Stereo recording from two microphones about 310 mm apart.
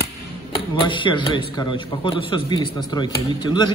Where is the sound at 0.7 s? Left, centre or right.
Centre.